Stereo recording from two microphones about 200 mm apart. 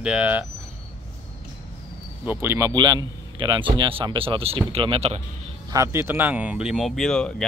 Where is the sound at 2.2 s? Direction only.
15° right (ahead or behind); by 5.2 s 30° right (ahead or behind).